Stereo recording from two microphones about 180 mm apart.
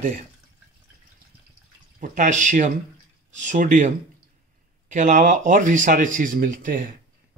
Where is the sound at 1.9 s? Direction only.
45° right (ahead or behind).